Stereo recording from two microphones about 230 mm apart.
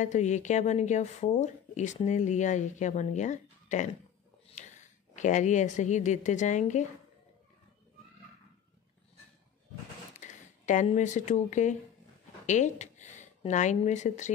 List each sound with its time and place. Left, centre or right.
0.0 s speech: left
10.1 s speech: left